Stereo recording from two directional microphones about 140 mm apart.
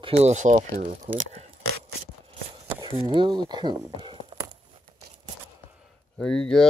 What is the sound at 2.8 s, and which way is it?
Speech, 35° right (ahead or behind).